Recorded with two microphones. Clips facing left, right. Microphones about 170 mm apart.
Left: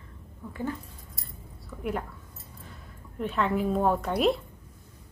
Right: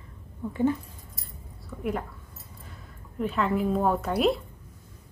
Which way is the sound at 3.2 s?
Centre (ahead or behind).